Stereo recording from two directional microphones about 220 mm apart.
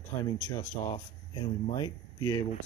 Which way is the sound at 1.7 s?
15° left (ahead or behind).